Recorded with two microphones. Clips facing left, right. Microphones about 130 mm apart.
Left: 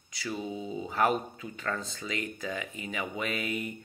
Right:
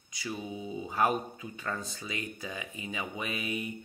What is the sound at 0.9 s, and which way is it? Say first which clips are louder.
Speech: left 1 dB; 15° right (ahead or behind).